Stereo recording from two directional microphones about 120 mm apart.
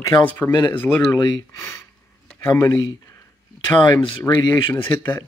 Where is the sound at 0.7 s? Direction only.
20° left (ahead or behind).